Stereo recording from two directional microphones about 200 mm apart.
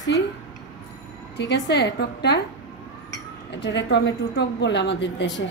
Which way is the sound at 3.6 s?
60° left (ahead or behind).